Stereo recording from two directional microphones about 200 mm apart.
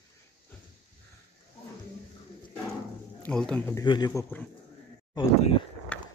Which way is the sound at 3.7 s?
20° left (ahead or behind).